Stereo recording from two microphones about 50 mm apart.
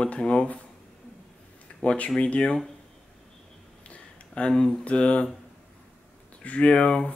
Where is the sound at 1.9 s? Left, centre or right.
Left.